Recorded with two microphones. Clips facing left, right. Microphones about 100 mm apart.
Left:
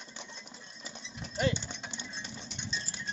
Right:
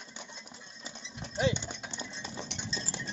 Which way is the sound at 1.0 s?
15° right (ahead or behind).